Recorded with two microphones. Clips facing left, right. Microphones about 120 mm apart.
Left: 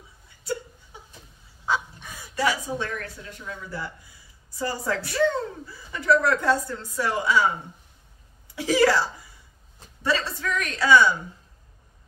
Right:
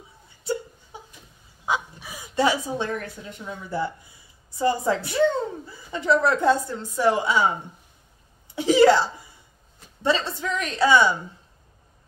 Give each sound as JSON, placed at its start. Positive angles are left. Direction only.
{"t": 1.7, "sound": "a sound", "side_deg": -10}
{"t": 2.2, "sound": "a woman's voice", "side_deg": -25}
{"t": 8.5, "sound": "a woman's voice", "side_deg": -25}